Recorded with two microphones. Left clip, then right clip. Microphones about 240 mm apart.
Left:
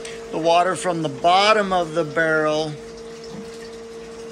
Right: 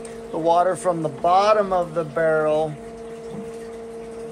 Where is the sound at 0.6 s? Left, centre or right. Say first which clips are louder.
Even; centre.